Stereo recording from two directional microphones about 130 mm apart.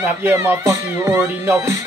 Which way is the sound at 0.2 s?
20° right (ahead or behind).